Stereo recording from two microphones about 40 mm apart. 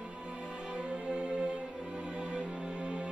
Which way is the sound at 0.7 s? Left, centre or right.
Right.